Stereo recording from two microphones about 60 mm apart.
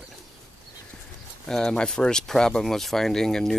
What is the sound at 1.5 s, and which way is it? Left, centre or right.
Speech, centre.